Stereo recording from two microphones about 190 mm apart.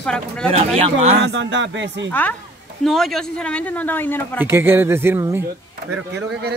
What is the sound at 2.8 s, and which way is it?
Speech, centre (ahead or behind).